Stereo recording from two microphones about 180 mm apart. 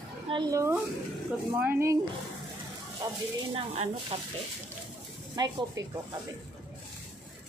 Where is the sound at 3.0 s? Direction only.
20° right (ahead or behind).